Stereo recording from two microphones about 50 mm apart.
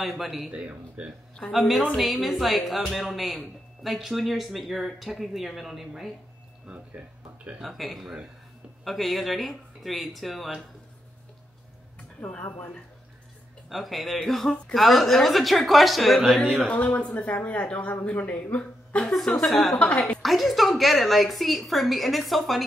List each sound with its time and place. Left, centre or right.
0.0 s speech: centre
0.5 s speech: right
1.5 s speech: centre
7.5 s speech: centre
13.7 s speech: centre
16.3 s speech: centre
19.2 s speech: centre